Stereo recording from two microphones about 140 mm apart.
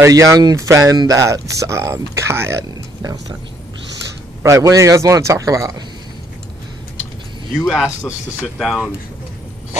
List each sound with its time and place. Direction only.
0.0 s speech: 20° right (ahead or behind)
4.4 s speech: 20° right (ahead or behind)
7.5 s speech: centre (ahead or behind)